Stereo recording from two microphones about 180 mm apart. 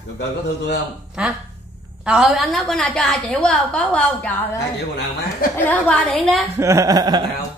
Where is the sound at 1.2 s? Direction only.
5° right (ahead or behind).